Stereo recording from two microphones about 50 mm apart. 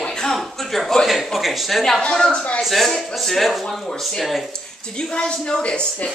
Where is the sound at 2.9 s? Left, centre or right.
Centre.